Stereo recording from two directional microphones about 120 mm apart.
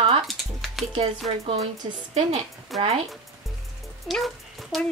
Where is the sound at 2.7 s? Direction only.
Centre (ahead or behind).